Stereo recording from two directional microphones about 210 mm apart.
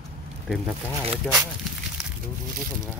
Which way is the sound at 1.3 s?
5° left (ahead or behind).